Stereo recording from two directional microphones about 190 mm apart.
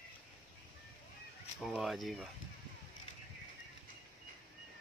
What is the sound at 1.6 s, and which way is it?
Speech, centre (ahead or behind).